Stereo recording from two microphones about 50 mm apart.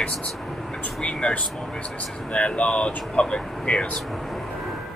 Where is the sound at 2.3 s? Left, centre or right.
Left.